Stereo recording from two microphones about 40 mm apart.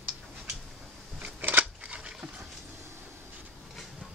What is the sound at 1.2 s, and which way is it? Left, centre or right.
Scissors, right.